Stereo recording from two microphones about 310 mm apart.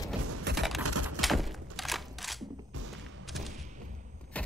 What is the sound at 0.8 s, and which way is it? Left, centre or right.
Typewriter, right.